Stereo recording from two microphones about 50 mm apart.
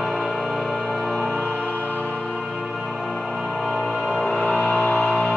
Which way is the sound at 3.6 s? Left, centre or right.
Centre.